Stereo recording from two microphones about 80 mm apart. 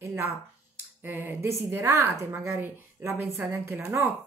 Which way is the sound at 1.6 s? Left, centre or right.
Right.